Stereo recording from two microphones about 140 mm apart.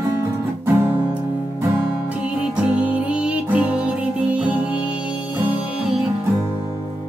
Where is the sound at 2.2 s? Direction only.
10° right (ahead or behind).